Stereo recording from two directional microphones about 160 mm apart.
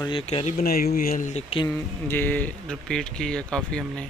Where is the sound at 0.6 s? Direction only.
70° left (ahead or behind); by 1.6 s 40° left (ahead or behind).